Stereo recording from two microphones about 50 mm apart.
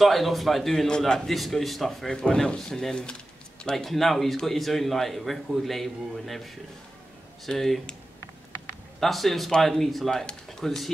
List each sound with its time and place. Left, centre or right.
0.0 s a man's voice: centre
0.8 s speech: centre
1.3 s a man's voice: centre
2.1 s speech: centre
3.7 s a man's voice: centre
9.0 s a man's voice: centre